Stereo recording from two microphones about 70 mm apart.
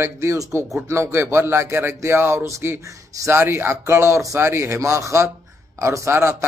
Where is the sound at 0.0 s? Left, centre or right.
Right.